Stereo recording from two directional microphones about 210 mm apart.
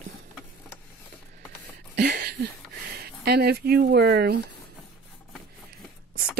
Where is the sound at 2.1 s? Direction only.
50° right (ahead or behind).